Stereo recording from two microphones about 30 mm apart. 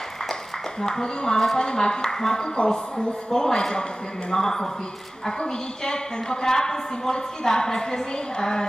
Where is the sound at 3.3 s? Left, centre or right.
Centre.